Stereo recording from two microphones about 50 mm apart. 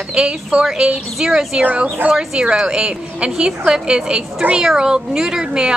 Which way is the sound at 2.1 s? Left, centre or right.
Centre.